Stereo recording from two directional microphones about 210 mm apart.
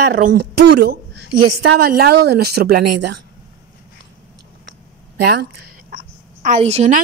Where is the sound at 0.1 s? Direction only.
45° right (ahead or behind).